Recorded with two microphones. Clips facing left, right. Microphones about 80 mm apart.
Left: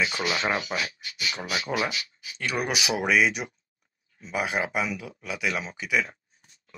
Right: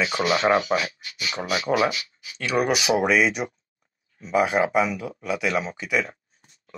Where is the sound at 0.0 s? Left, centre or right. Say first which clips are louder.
Right 5 dB; right.